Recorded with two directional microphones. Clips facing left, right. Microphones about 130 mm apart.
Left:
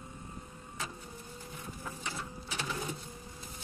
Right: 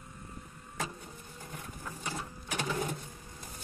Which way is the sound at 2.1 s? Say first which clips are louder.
Right 5 dB; 50° right (ahead or behind).